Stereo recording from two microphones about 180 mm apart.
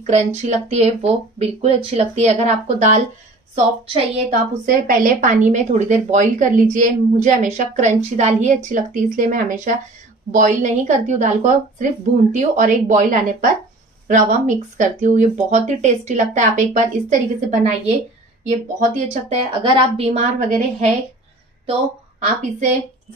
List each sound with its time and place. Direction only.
0.0 s speech: 40° right (ahead or behind)
4.6 s a woman's voice: 50° right (ahead or behind)
18.9 s speech: 35° right (ahead or behind)